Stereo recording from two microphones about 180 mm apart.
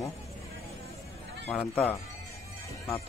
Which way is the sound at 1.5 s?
10° left (ahead or behind).